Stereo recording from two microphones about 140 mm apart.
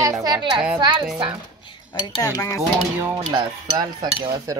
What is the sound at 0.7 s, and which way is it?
Speech, 30° right (ahead or behind).